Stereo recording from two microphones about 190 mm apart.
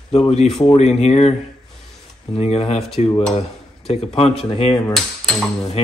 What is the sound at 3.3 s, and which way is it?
Dishes, 30° left (ahead or behind).